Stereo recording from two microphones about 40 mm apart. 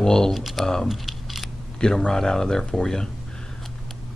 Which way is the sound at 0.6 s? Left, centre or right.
Centre.